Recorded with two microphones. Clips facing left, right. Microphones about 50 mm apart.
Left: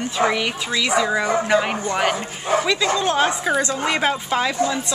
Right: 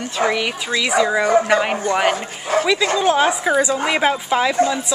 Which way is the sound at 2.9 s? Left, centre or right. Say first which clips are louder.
Right 3 dB; centre.